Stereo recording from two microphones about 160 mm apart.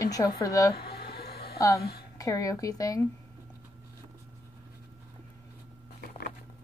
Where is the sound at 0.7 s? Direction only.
85° left.